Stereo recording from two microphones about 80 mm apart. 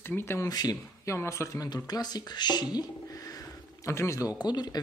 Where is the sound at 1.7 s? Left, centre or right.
Left.